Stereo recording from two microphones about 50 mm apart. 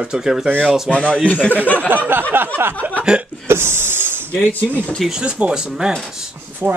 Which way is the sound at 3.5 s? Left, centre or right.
Right.